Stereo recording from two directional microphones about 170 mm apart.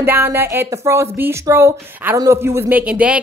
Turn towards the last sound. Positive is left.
turn(degrees=-5)  # may be behind; listen again after turning